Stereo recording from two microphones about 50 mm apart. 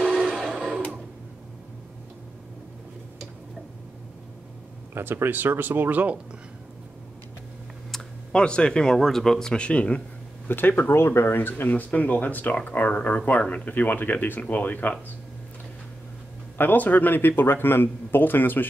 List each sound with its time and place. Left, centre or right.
0.6 s blender: centre
4.9 s speech: right
8.3 s speech: centre
10.5 s speech: left
11.0 s speech: left
11.9 s speech: left
16.5 s speech: left